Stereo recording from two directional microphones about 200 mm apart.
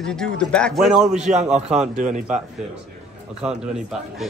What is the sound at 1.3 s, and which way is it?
A man's voice, 35° right (ahead or behind).